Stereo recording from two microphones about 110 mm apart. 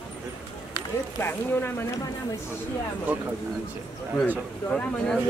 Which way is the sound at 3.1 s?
15° right (ahead or behind).